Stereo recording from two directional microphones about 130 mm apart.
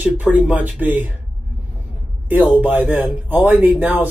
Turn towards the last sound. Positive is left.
turn(degrees=-10)  # may be behind; listen again after turning